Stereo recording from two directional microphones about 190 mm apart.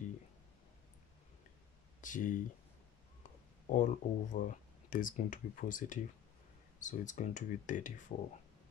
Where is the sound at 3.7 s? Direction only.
40° left (ahead or behind).